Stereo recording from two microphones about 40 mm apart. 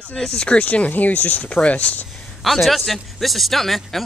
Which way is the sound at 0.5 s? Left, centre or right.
Left.